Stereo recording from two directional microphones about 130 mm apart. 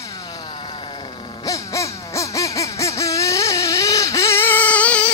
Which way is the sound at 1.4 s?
25° left (ahead or behind).